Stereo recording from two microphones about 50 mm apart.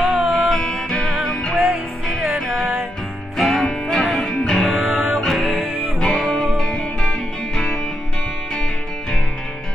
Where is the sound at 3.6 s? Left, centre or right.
Centre.